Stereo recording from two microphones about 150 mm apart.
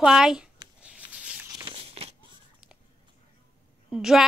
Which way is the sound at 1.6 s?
40° right (ahead or behind).